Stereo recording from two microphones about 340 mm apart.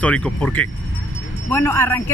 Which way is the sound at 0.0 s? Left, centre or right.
Centre.